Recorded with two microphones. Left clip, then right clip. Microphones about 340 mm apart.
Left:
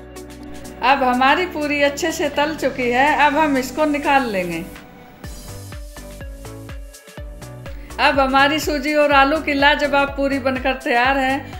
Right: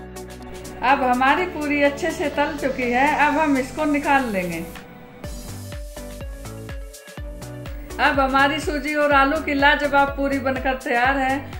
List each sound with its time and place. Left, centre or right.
0.7 s a woman's voice: left
8.0 s a woman's voice: left